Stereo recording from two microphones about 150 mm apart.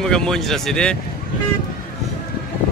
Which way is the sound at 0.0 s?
5° left (ahead or behind).